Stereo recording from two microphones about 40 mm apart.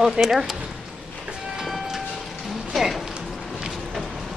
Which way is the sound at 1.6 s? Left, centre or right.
Centre.